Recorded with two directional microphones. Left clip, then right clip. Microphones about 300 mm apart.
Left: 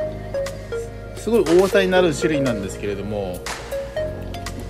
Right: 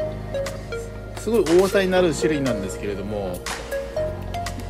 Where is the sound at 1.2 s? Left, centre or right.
Centre.